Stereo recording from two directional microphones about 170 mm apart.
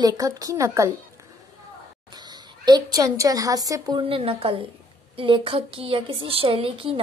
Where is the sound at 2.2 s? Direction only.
25° right (ahead or behind).